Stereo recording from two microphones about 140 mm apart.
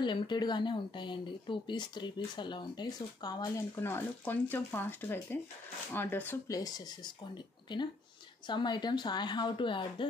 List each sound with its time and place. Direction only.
0.0 s speech: 35° left (ahead or behind)
3.7 s speech: 15° left (ahead or behind)
8.5 s speech: 35° left (ahead or behind)